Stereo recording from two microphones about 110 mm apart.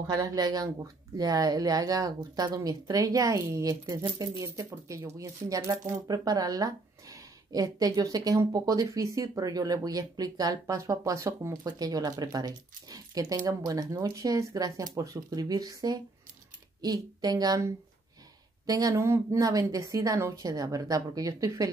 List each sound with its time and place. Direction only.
0.0 s a woman's voice: 35° right (ahead or behind)